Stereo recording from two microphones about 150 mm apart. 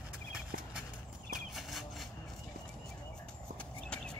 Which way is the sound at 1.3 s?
Centre (ahead or behind).